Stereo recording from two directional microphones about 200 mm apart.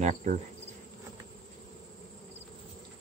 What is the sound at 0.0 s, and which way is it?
Speech, 40° right (ahead or behind).